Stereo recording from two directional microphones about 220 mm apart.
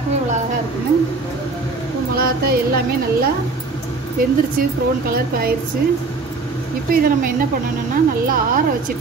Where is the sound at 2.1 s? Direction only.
40° right (ahead or behind).